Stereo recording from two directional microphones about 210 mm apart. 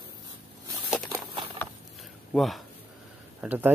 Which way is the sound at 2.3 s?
Centre (ahead or behind).